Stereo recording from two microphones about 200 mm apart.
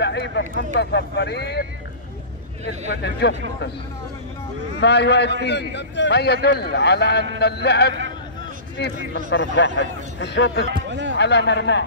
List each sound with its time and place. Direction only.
0.0 s a man's voice: 60° left (ahead or behind)
2.9 s a man's voice: 60° left (ahead or behind)
4.7 s a man's voice: 55° left (ahead or behind)
10.9 s speech: 65° right (ahead or behind)
11.1 s a man's voice: 60° left (ahead or behind)